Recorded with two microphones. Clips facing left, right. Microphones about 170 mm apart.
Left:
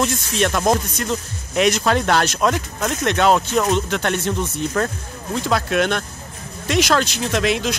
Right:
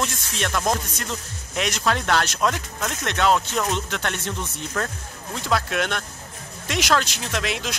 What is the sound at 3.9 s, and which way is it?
Speech, 10° left (ahead or behind).